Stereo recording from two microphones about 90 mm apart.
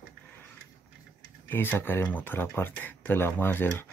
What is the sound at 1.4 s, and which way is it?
Speech, 25° left (ahead or behind).